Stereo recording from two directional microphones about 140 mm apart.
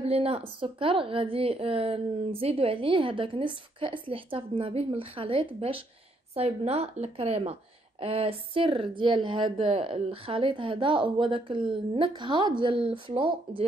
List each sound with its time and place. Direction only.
0.0 s a woman's voice: 45° right (ahead or behind)